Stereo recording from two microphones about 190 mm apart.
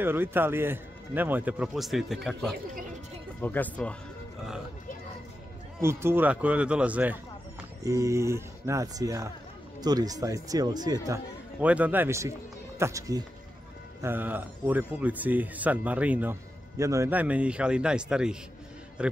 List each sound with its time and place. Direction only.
0.0 s speech: 10° right (ahead or behind); by 3.9 s 10° left (ahead or behind)
5.8 s speech: 15° right (ahead or behind)
11.6 s speech: 10° right (ahead or behind)